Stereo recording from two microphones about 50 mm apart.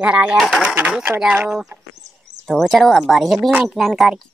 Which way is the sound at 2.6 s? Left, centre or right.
Centre.